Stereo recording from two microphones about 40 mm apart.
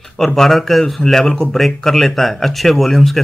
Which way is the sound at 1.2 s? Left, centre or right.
Left.